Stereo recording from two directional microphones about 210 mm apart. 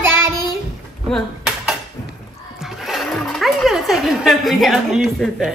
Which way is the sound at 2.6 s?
Centre (ahead or behind).